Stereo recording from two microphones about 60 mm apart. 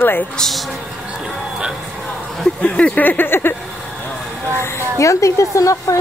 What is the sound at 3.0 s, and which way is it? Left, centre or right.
Speech, left.